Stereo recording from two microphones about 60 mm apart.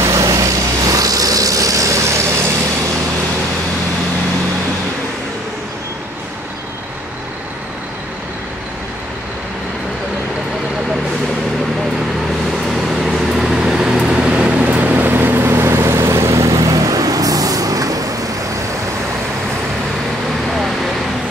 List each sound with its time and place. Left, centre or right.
0.0 s vehicle: right
13.0 s vehicle: centre; by 16.5 s right
16.5 s vehicle: right